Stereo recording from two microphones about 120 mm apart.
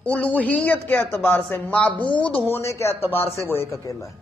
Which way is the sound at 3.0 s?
55° left (ahead or behind).